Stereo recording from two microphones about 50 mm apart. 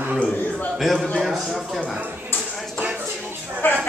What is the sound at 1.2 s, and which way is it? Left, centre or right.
Speech, centre.